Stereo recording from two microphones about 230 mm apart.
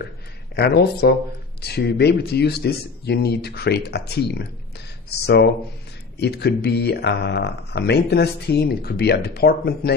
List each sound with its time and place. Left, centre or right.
0.6 s speech: left